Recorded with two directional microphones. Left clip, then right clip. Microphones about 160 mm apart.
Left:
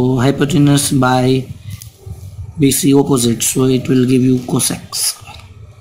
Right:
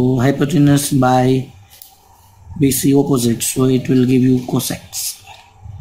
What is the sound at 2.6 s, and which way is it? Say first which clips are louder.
Speech: left 2 dB; 15° left (ahead or behind).